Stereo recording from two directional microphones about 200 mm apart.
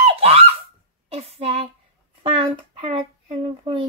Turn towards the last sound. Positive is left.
turn(degrees=-25)  # may be behind; listen again after turning